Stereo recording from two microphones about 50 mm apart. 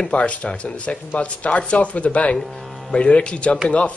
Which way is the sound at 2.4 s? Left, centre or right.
Centre.